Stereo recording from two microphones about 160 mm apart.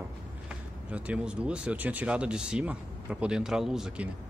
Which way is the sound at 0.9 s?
10° right (ahead or behind).